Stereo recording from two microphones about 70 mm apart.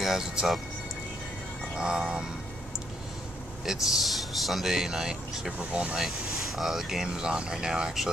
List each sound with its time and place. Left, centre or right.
0.0 s speech: centre
1.8 s speech: centre
3.6 s speech: centre
5.7 s speech: centre
5.9 s speech: centre